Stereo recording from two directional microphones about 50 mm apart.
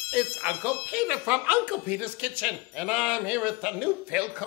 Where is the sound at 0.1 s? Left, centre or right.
Right.